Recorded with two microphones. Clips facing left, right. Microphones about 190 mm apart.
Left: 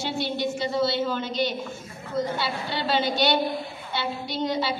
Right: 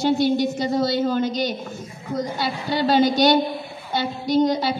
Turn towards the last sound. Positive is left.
turn(degrees=-40)  # may be behind; listen again after turning